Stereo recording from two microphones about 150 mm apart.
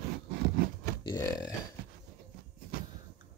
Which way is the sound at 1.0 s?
25° left (ahead or behind).